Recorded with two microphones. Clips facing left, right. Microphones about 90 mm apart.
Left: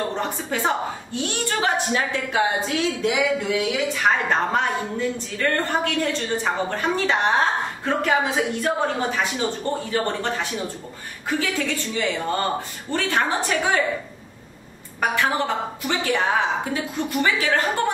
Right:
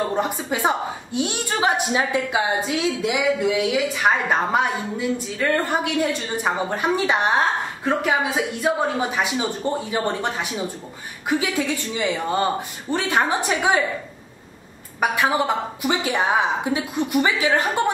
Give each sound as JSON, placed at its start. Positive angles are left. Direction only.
{"t": 0.1, "sound": "a woman's voice", "side_deg": -15}
{"t": 15.0, "sound": "a woman's voice", "side_deg": -15}